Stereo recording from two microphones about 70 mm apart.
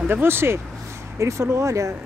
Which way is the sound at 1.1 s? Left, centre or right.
Right.